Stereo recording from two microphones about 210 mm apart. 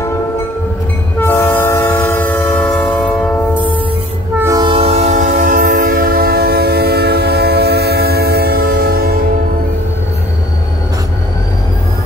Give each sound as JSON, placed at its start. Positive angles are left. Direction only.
{"t": 1.2, "sound": "train", "side_deg": 10}
{"t": 4.4, "sound": "train", "side_deg": -20}